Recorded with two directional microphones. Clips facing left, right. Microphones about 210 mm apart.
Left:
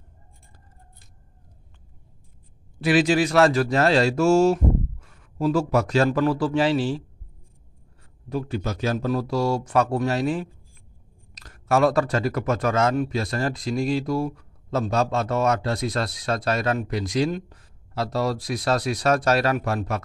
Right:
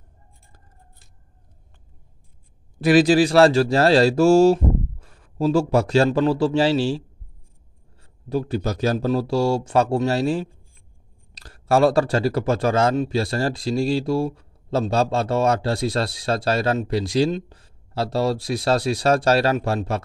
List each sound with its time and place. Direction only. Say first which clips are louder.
2.8 s speech: right 4 dB; 40° right (ahead or behind)
8.3 s speech: right 4 dB; 35° right (ahead or behind)